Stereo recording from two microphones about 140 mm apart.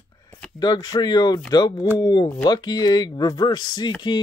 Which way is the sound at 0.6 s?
30° left (ahead or behind).